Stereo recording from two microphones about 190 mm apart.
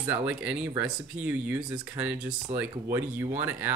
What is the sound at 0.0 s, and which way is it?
Speech, 10° right (ahead or behind).